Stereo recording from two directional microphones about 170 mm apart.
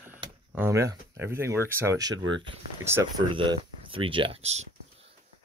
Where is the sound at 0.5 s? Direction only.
15° right (ahead or behind).